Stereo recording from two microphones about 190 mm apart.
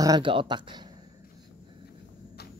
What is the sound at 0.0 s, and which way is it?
Speech, 25° right (ahead or behind).